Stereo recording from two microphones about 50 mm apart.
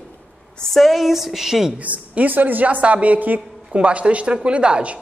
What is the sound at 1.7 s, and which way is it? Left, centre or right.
Speech, right.